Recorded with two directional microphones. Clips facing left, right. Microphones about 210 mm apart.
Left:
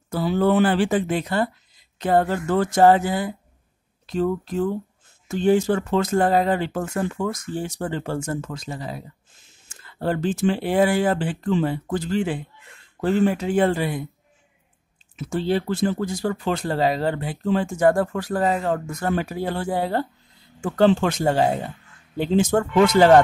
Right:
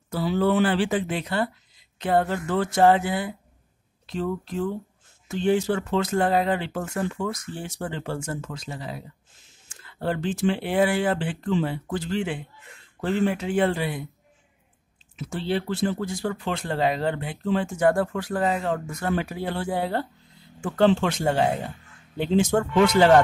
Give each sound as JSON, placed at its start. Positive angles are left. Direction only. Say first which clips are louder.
{"t": 0.1, "sound": "speech", "louder": "left 3 dB", "side_deg": 50}
{"t": 15.1, "sound": "speech", "louder": "left 4 dB", "side_deg": 45}